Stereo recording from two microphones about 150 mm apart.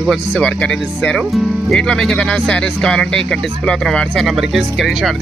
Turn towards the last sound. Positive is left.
turn(degrees=0)  # may be behind; listen again after turning